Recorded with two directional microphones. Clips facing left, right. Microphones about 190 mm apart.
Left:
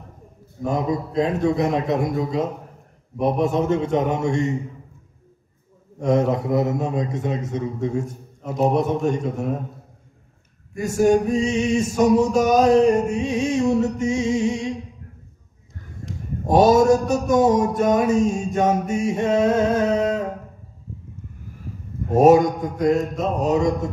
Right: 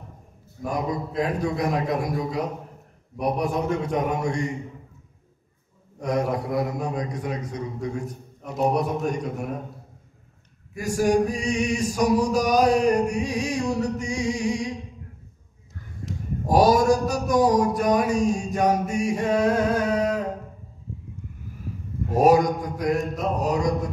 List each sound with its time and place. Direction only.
0.7 s male singing: 25° left (ahead or behind)
5.9 s male singing: 25° left (ahead or behind)
8.4 s speech: centre (ahead or behind)
8.6 s male singing: 25° left (ahead or behind)
10.8 s male singing: 25° left (ahead or behind)
16.4 s male singing: 25° left (ahead or behind)
22.1 s male singing: 25° left (ahead or behind)